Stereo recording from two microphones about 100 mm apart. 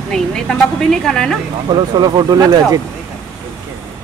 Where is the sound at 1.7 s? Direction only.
45° right (ahead or behind).